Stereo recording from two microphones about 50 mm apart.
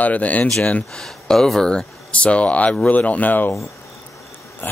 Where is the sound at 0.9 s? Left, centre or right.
Centre; by 3.5 s left.